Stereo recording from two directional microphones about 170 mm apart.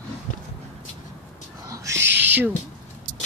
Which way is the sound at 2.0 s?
90° right.